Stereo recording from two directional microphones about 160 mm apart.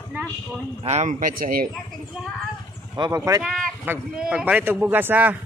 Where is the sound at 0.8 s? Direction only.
45° right (ahead or behind); by 1.6 s 65° right (ahead or behind).